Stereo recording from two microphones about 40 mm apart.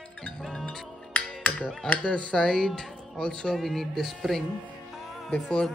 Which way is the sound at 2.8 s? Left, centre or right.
Centre.